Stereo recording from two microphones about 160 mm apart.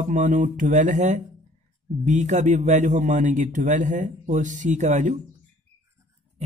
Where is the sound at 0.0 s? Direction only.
50° right (ahead or behind).